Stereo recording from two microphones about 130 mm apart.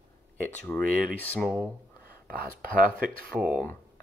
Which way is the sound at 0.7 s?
5° left (ahead or behind).